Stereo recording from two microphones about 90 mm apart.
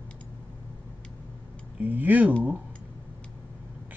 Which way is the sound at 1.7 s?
20° right (ahead or behind).